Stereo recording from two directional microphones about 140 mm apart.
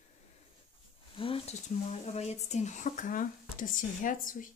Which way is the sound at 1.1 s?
40° left (ahead or behind).